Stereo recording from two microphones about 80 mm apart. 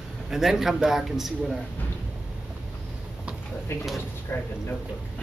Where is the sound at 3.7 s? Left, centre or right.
Left.